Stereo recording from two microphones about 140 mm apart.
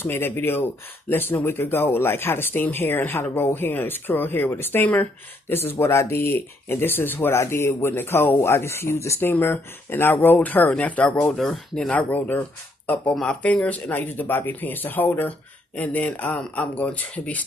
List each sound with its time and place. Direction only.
0.0 s speech: 15° left (ahead or behind)